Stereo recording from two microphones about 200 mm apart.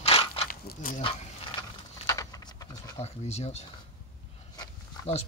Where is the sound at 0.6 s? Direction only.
45° left (ahead or behind).